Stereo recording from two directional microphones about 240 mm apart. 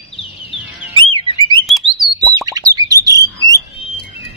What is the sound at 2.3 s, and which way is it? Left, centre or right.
Plop, centre.